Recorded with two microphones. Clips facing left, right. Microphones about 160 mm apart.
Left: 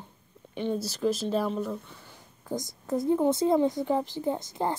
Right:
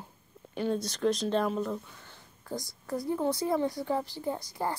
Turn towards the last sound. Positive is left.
turn(degrees=20)  # may be behind; listen again after turning